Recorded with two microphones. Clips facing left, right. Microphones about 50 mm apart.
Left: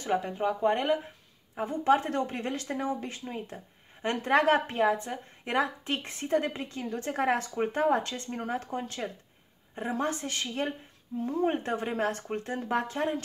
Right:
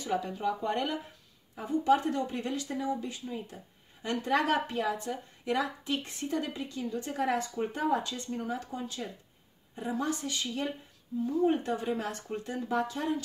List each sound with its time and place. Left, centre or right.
0.0 s speech: left